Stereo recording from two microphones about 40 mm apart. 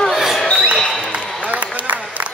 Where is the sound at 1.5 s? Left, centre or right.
Right.